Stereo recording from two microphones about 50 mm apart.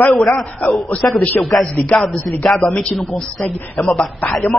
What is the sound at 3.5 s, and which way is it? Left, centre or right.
Speech, left.